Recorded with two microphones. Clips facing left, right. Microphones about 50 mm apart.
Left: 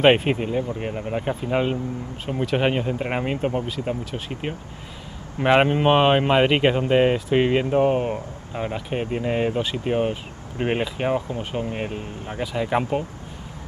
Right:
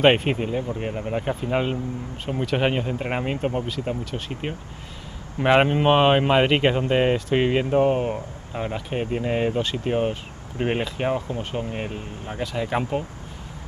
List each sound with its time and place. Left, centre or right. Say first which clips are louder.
0.0 s speech: left 1 dB; centre